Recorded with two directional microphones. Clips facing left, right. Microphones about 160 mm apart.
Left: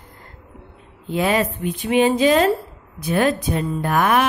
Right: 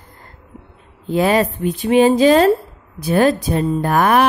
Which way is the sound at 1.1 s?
35° right (ahead or behind).